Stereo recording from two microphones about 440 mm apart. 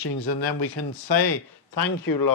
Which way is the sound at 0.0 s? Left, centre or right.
Left.